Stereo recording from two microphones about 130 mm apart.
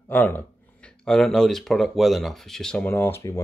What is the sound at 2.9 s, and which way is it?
Speech, 20° left (ahead or behind).